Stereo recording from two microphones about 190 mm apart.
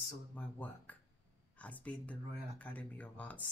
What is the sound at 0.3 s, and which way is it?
Speech, 5° left (ahead or behind).